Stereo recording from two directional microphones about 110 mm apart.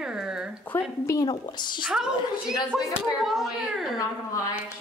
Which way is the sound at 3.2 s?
5° right (ahead or behind).